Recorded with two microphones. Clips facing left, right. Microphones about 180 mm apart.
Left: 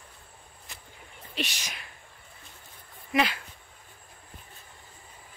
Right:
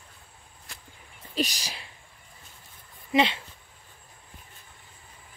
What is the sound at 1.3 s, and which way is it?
Speech, 35° right (ahead or behind).